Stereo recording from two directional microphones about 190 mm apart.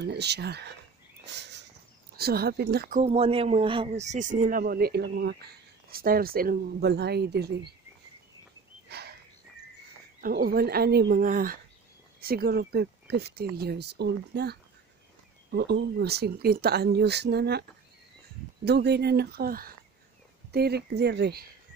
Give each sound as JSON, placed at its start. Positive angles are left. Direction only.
{"t": 0.0, "sound": "speech", "side_deg": -60}
{"t": 1.2, "sound": "a sound", "side_deg": -65}
{"t": 2.1, "sound": "speech", "side_deg": -55}
{"t": 3.0, "sound": "a man's voice", "side_deg": -30}
{"t": 8.8, "sound": "a sound", "side_deg": -60}
{"t": 10.2, "sound": "a man's voice", "side_deg": -50}